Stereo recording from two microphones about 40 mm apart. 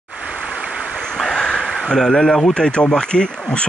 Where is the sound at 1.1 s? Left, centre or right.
Centre.